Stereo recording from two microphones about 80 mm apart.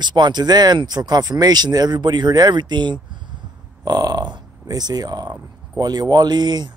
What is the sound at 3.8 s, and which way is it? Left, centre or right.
Speech, right.